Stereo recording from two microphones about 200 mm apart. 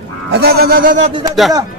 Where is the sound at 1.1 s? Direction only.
20° right (ahead or behind).